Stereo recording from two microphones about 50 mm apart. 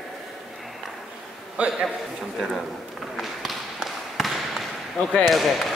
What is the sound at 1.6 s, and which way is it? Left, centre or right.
Speech, right.